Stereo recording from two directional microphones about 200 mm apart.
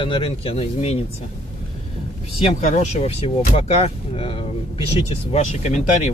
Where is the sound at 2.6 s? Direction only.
35° left (ahead or behind).